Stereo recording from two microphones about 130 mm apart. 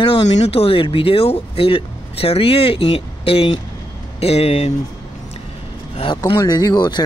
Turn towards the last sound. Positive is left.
turn(degrees=35)  # may be behind; listen again after turning